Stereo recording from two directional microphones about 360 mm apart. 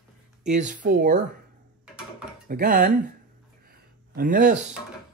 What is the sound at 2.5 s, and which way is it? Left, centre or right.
Speech, right.